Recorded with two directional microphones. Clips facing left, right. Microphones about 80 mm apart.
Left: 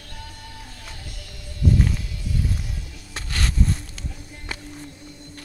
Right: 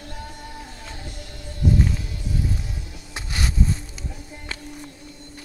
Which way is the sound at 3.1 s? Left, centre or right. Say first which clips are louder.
Even; centre.